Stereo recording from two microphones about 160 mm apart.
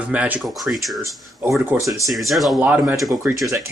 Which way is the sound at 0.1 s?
10° right (ahead or behind).